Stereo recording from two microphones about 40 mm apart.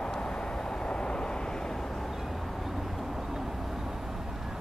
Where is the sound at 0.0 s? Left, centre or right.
Centre.